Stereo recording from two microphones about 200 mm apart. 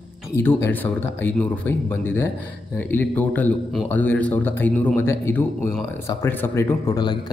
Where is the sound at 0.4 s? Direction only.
10° left (ahead or behind).